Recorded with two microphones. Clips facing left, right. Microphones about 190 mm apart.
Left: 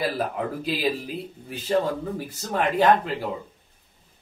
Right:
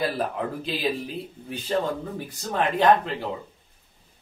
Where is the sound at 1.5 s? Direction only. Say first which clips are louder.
Left 2 dB; 5° left (ahead or behind).